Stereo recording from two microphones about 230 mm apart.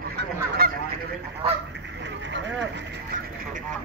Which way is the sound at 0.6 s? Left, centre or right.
Right.